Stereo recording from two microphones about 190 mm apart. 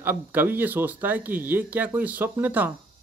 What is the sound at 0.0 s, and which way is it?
Speech, 10° right (ahead or behind).